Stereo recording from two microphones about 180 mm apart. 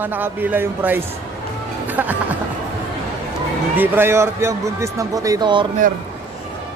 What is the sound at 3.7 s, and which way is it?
Speech, 10° right (ahead or behind).